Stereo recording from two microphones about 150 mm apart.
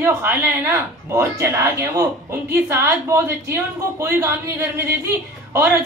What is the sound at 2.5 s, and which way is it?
A woman's voice, 15° right (ahead or behind).